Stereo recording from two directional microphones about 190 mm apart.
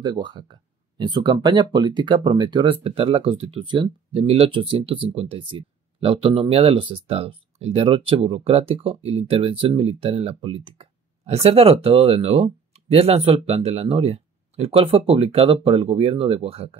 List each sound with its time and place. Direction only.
0.0 s speech: 25° right (ahead or behind)